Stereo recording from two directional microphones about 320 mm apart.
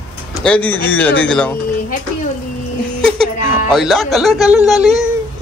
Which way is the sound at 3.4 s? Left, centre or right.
Left.